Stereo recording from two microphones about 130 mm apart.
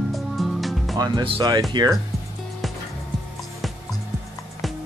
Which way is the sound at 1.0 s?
30° right (ahead or behind).